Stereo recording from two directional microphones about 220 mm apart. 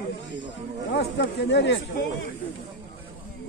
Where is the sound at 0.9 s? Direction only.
50° left (ahead or behind).